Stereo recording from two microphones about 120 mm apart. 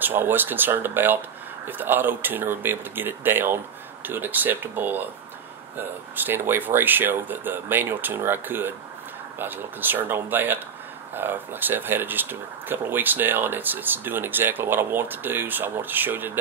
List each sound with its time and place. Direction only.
0.0 s speech: 15° right (ahead or behind)